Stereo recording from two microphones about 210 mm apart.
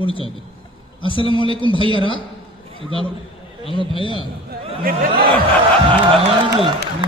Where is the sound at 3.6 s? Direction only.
25° left (ahead or behind).